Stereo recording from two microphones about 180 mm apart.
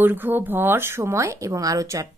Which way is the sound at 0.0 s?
10° right (ahead or behind).